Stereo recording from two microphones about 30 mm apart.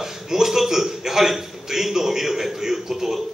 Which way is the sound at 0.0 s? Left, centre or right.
Centre.